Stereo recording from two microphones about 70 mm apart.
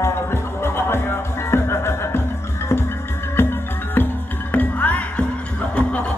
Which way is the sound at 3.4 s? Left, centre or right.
Left.